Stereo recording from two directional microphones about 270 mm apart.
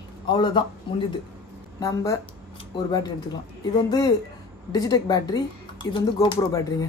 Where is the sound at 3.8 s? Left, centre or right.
Centre.